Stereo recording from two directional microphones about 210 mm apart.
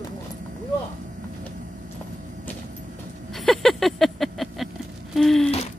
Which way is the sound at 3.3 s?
Centre (ahead or behind).